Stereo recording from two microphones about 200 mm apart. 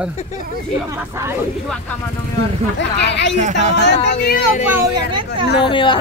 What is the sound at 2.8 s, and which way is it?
Speech, 60° left (ahead or behind).